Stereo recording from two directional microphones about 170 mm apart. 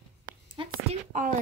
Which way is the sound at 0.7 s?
50° right (ahead or behind).